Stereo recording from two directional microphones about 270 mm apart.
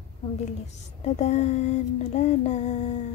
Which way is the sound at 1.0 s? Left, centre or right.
Left.